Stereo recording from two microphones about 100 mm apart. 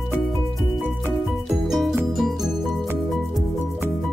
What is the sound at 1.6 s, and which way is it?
Music, centre (ahead or behind).